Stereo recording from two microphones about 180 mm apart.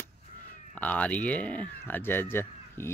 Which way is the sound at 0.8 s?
10° left (ahead or behind).